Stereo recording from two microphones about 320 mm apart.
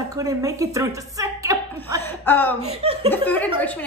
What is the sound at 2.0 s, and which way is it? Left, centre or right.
Speech, centre.